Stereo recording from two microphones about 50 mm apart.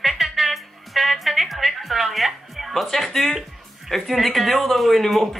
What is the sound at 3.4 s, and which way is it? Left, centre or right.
Speech, centre.